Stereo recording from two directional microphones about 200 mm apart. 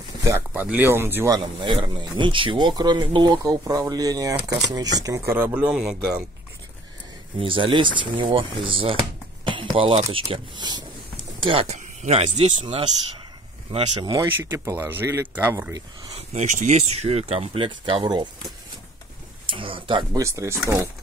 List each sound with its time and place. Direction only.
0.5 s speech: 5° right (ahead or behind)
7.3 s speech: 25° right (ahead or behind)
14.1 s speech: 15° right (ahead or behind)
16.2 s speech: 35° right (ahead or behind)
19.4 s speech: 25° right (ahead or behind)